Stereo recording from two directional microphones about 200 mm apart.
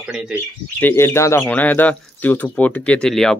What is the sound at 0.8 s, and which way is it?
Speech, 10° left (ahead or behind).